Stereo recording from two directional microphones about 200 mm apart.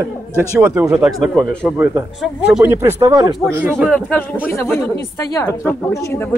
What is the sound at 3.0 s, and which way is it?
Speech, 20° right (ahead or behind).